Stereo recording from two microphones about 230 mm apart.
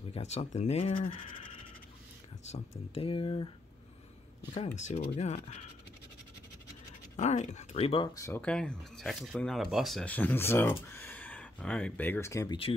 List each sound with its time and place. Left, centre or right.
0.1 s speech: left
2.9 s speech: left
4.7 s speech: left
7.2 s speech: left